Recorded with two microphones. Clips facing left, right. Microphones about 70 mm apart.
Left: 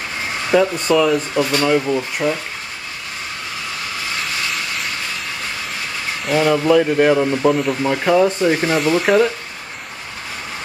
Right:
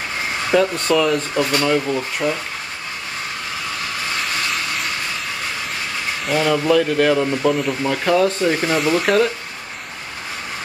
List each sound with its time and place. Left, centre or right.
0.5 s speech: centre
6.2 s speech: centre